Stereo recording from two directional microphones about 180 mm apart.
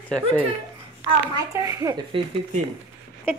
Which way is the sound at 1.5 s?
15° right (ahead or behind).